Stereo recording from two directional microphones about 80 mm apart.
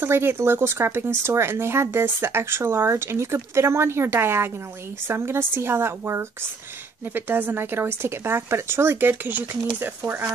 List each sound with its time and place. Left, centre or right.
0.0 s speech: right